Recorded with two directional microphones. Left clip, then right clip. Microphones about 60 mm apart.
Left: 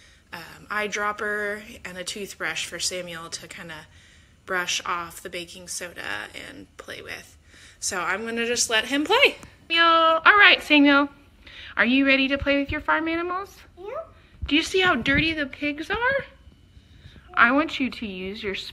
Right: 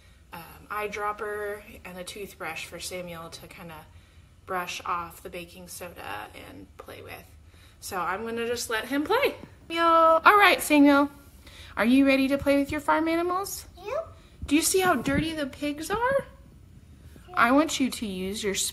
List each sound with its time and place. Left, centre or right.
0.3 s a sound: centre
1.2 s a woman's voice: centre
10.1 s a woman's voice: right
10.4 s a woman's voice: right
11.4 s speech: right
12.4 s a woman's voice: right
17.3 s a woman's voice: right